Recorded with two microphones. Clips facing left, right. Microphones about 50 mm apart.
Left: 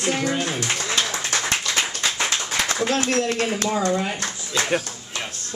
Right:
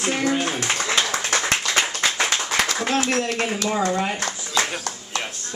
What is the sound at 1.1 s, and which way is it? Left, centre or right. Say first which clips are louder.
Clapping: right 2 dB; right.